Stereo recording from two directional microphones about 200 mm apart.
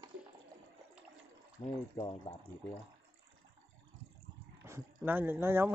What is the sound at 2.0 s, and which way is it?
Speech, 20° left (ahead or behind).